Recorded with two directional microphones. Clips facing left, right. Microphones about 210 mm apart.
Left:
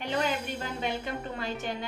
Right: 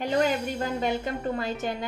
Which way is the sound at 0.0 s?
40° right (ahead or behind).